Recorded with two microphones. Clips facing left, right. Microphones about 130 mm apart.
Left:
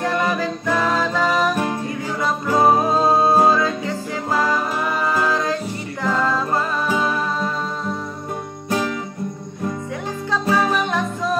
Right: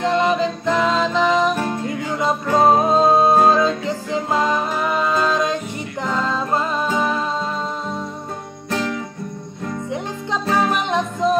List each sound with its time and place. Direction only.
0.0 s music: 20° right (ahead or behind)
10.5 s music: 20° right (ahead or behind)